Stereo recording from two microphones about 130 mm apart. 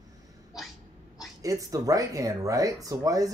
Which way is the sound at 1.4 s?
25° right (ahead or behind).